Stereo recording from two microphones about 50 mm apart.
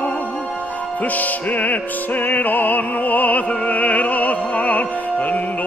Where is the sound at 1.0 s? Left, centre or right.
Left.